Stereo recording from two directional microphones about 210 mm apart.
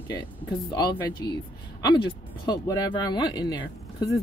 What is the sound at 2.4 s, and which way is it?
Speech, 20° left (ahead or behind).